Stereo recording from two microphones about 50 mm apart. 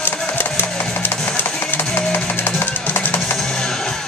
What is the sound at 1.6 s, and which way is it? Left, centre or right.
Music, left.